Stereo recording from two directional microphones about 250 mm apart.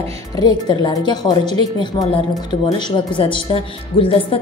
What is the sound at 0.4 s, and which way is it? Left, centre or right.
A woman's voice, centre.